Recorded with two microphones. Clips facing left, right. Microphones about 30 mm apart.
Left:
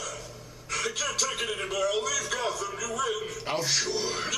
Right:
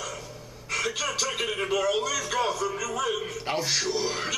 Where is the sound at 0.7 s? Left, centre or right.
Centre.